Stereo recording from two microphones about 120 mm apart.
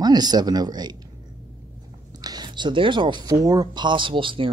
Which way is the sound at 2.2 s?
35° right (ahead or behind).